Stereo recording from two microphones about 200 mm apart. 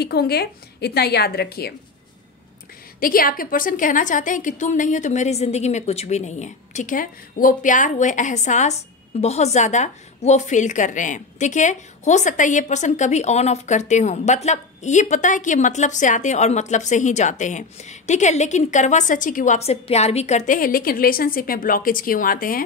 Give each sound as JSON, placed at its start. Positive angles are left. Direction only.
{"t": 0.0, "sound": "a woman's voice", "side_deg": 50}
{"t": 3.0, "sound": "a woman's voice", "side_deg": 45}